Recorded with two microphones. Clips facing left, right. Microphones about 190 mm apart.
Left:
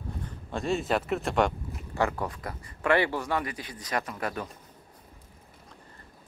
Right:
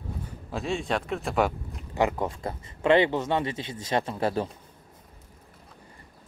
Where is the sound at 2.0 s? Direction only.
20° right (ahead or behind).